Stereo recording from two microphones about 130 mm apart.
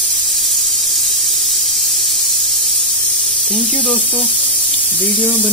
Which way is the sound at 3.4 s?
5° left (ahead or behind).